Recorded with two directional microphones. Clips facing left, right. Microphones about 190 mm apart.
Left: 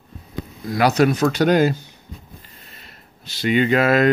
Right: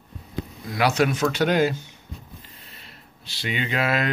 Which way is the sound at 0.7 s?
40° left (ahead or behind).